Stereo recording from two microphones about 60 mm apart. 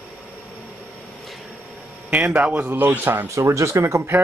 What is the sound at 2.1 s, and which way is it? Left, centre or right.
Speech, right.